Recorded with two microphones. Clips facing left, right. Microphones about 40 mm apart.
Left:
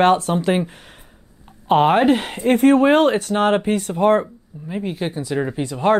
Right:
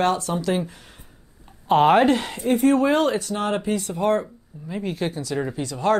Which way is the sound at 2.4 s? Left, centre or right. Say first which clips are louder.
Left 5 dB; left.